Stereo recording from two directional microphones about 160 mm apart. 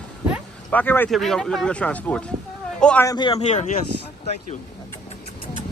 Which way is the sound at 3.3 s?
45° left (ahead or behind).